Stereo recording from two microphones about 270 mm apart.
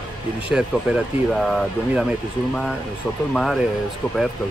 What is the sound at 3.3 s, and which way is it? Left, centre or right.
Speech, centre.